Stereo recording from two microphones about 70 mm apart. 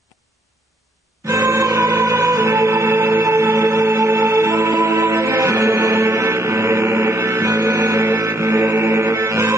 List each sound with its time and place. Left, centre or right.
1.2 s music: right